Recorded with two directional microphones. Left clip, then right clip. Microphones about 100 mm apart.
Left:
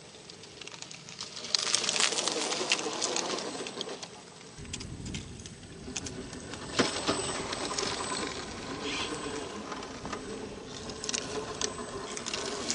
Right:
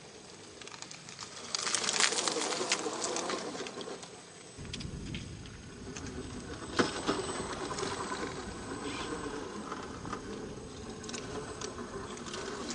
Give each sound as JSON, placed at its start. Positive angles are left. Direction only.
{"t": 1.2, "sound": "bird", "side_deg": 0}
{"t": 6.7, "sound": "a sound", "side_deg": 0}
{"t": 11.1, "sound": "patter", "side_deg": 20}